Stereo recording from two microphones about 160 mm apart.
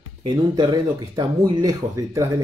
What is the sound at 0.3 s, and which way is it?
Speech, 20° right (ahead or behind).